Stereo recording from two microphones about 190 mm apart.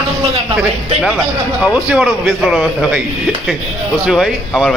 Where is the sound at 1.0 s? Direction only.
5° right (ahead or behind).